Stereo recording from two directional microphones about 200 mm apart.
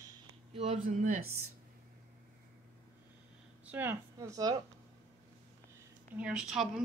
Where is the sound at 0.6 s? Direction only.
35° right (ahead or behind).